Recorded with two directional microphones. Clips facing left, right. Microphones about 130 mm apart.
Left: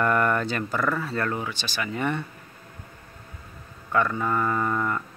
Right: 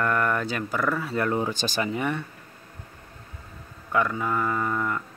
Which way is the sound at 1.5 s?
45° right (ahead or behind).